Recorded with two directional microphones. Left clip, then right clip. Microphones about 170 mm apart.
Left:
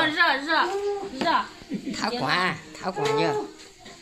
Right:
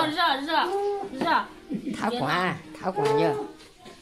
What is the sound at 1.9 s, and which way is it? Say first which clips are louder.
Speech: left 1 dB; 35° right (ahead or behind).